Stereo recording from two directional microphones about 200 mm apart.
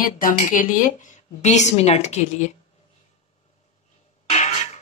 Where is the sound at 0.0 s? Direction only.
45° left (ahead or behind).